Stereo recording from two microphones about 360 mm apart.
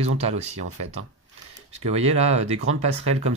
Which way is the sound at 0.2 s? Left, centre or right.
Centre.